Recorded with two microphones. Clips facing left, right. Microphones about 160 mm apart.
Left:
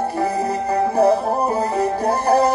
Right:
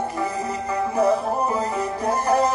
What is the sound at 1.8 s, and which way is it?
Music, 35° left (ahead or behind).